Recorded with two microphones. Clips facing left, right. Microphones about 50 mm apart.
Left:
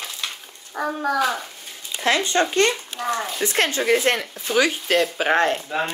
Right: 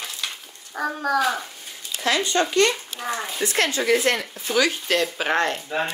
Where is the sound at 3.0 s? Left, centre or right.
Centre.